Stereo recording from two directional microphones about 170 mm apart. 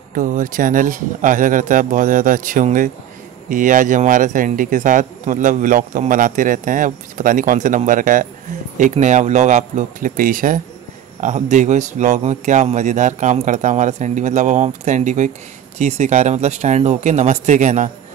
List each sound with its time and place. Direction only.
0.1 s speech: 50° right (ahead or behind)